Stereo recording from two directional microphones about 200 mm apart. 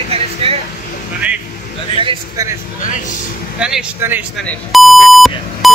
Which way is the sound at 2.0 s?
20° right (ahead or behind).